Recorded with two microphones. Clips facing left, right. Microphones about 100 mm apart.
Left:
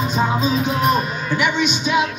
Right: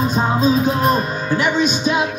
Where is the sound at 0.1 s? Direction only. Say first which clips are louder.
Right 1 dB; 40° right (ahead or behind).